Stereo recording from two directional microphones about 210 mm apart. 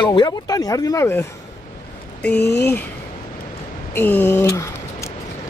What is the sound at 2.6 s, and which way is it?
Speech, 10° left (ahead or behind).